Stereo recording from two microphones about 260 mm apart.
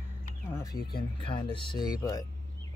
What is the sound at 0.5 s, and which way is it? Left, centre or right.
Speech, centre.